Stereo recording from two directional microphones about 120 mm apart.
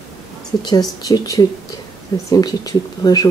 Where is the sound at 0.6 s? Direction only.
35° left (ahead or behind).